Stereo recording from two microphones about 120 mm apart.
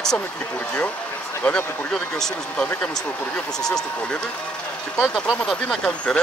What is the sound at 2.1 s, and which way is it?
Speech, 5° left (ahead or behind).